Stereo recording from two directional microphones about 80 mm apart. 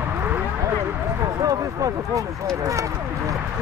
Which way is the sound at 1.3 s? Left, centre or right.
Right.